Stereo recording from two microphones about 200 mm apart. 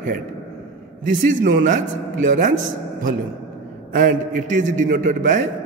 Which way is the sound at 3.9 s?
40° right (ahead or behind).